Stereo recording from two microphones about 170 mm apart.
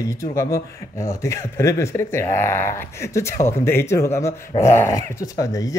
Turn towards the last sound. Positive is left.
turn(degrees=20)  # may be behind; listen again after turning